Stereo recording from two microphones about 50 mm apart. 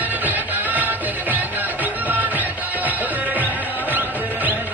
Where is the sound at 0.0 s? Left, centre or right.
Right.